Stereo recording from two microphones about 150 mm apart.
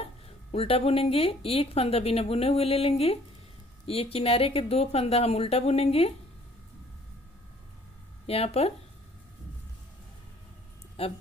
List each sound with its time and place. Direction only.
0.0 s speech: 40° left (ahead or behind)
8.3 s speech: 40° left (ahead or behind)
11.0 s speech: 40° left (ahead or behind)